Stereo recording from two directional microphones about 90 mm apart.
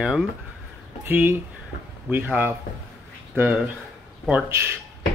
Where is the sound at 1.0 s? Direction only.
20° right (ahead or behind).